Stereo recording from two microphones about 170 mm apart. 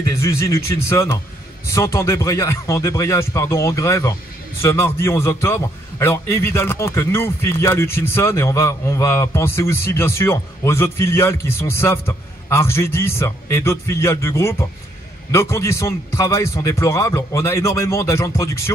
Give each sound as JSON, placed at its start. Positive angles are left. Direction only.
{"t": 0.1, "sound": "a man's voice", "side_deg": 15}